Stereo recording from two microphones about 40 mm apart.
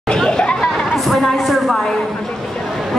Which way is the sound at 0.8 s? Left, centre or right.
Centre.